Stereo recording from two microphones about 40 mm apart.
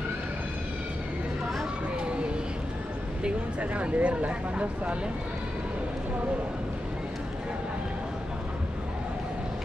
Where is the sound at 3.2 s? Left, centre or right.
Right.